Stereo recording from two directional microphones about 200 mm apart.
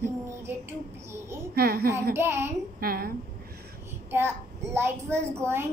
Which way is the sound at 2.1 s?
10° right (ahead or behind).